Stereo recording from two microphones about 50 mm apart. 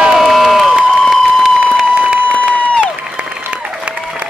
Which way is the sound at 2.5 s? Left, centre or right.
Left.